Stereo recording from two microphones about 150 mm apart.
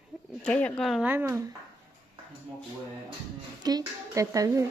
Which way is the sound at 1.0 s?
15° right (ahead or behind).